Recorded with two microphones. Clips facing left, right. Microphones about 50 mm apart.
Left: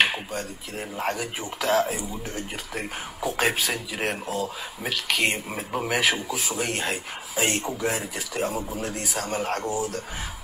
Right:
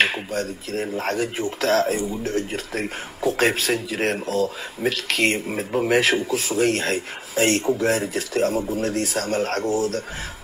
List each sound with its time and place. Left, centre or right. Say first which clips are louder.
0.7 s speech: right 5 dB; centre
4.3 s speech: right 6 dB; centre
5.7 s a man's voice: right 7 dB; centre
5.9 s speech: right 3 dB; centre
9.7 s speech: right 5 dB; right